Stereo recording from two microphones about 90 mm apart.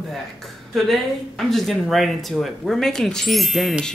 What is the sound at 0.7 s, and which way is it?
Speech, centre (ahead or behind).